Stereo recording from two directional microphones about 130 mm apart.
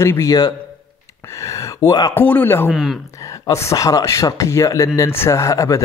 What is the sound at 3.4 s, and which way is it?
Speech, 25° left (ahead or behind).